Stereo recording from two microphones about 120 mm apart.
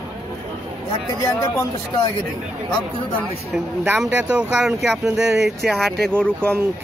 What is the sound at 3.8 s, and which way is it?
Speech, 15° right (ahead or behind).